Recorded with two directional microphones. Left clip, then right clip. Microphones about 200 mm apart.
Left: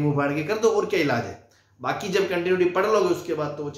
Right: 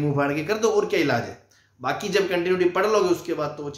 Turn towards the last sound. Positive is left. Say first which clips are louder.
# even
turn(degrees=-25)  # may be behind; listen again after turning